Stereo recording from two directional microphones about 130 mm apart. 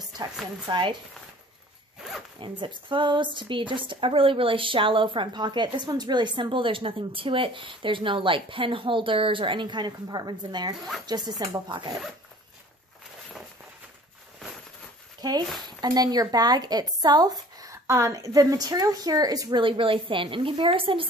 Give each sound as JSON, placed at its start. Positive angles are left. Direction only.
{"t": 0.2, "sound": "a woman's voice", "side_deg": -40}
{"t": 2.4, "sound": "a woman's voice", "side_deg": -40}
{"t": 15.2, "sound": "speech", "side_deg": -30}
{"t": 19.6, "sound": "a woman's voice", "side_deg": -40}